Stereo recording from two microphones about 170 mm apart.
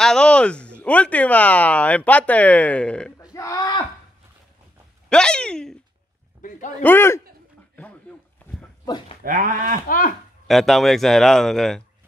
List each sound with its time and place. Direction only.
0.0 s speech: 5° left (ahead or behind)
3.2 s speech: 20° left (ahead or behind)
5.1 s speech: 5° left (ahead or behind)
6.8 s speech: 15° left (ahead or behind)
8.8 s speech: 25° left (ahead or behind)
9.2 s speech: 55° right (ahead or behind)
9.8 s speech: 55° left (ahead or behind)
10.4 s speech: centre (ahead or behind)